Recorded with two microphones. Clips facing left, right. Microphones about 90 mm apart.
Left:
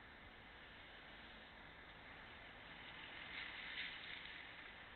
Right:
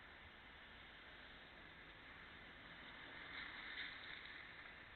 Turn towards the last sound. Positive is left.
turn(degrees=-25)  # may be behind; listen again after turning